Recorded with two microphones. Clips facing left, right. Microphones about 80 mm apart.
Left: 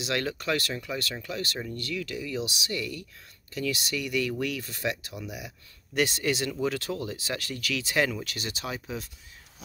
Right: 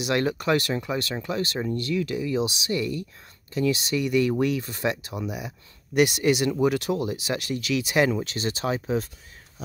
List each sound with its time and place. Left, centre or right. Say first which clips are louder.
0.0 s speech: right 6 dB; right
8.2 s speech: right 8 dB; right